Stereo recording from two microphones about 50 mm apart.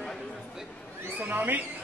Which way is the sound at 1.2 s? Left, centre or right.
Right.